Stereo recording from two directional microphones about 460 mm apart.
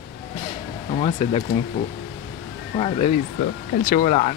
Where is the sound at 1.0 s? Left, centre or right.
Centre.